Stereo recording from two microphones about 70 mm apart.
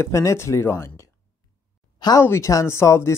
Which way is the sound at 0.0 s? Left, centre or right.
Left.